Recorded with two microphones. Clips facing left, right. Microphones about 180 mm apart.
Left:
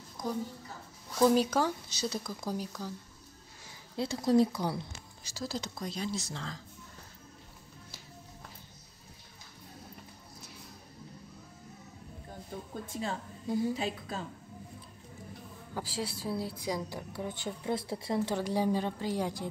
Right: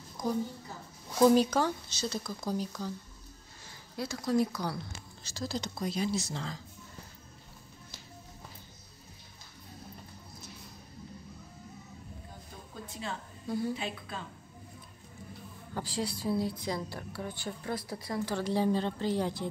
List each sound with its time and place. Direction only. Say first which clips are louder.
1.2 s a woman's voice: right 2 dB; 5° left (ahead or behind)
3.9 s speech: left 4 dB; 30° left (ahead or behind)
5.2 s speech: right 1 dB; 5° left (ahead or behind); by 6.6 s 10° right (ahead or behind)
12.9 s a woman's voice: left 3 dB; 40° left (ahead or behind)
13.5 s a woman's voice: left 2 dB; 15° left (ahead or behind)
13.7 s a woman's voice: left 3 dB; 40° left (ahead or behind)
15.7 s a woman's voice: right 2 dB; 5° left (ahead or behind); by 18.4 s 25° left (ahead or behind)
18.4 s a woman's voice: right 1 dB; 10° left (ahead or behind)